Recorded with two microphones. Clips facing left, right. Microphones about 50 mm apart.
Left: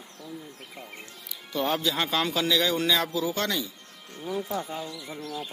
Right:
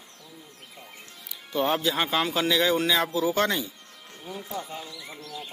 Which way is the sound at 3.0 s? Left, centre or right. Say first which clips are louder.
Right 4 dB; right.